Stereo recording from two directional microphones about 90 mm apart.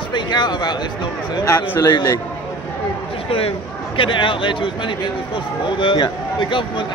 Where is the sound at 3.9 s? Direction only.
70° left (ahead or behind).